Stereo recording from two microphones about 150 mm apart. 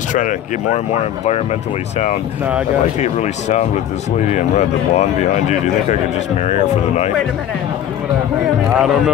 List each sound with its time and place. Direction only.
0.1 s speech: 60° left (ahead or behind)
3.0 s speech: 50° left (ahead or behind)
6.4 s speech: 45° left (ahead or behind)
8.7 s speech: 5° right (ahead or behind)